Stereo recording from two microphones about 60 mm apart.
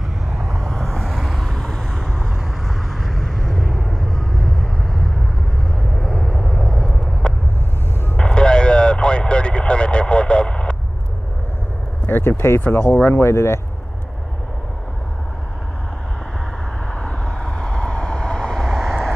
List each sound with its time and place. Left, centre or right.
0.4 s vehicle: centre
0.7 s vehicle: centre
12.1 s speech: left
16.9 s vehicle: centre